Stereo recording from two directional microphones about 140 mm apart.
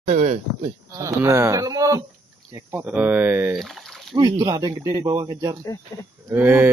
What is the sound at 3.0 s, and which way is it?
Speech, 10° right (ahead or behind).